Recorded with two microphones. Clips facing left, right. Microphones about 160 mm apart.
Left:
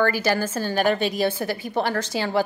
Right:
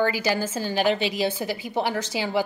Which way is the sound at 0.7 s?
50° left (ahead or behind).